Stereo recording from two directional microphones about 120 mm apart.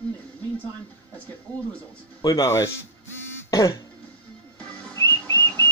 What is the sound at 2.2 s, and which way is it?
Speech, 30° left (ahead or behind).